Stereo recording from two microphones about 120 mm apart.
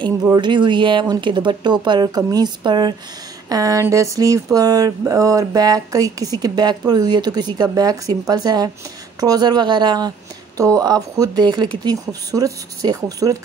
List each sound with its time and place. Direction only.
0.4 s a woman's voice: 40° right (ahead or behind)
3.8 s a sound: 25° right (ahead or behind)
6.4 s a woman's voice: 35° right (ahead or behind)